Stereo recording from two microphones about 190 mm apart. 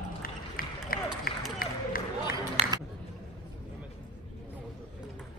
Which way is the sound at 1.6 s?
50° left (ahead or behind).